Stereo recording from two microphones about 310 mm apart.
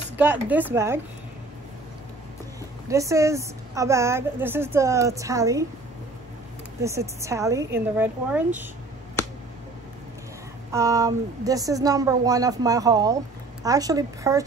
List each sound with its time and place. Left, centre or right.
0.2 s speech: centre
2.9 s a woman's voice: centre
6.8 s a woman's voice: centre
10.7 s a woman's voice: centre